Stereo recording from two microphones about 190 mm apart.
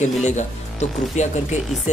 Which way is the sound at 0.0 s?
35° left (ahead or behind).